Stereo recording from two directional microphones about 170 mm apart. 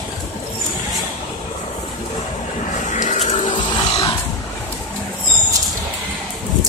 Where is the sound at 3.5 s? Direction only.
25° left (ahead or behind).